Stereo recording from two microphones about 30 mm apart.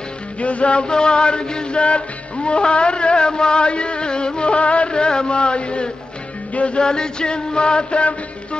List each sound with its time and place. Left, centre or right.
0.4 s music: left
0.8 s music: left
4.9 s music: left
6.8 s music: left